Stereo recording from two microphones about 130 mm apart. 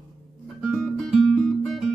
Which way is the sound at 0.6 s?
Centre (ahead or behind).